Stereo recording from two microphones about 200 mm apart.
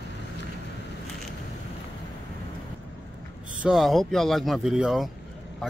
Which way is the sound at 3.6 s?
Centre (ahead or behind).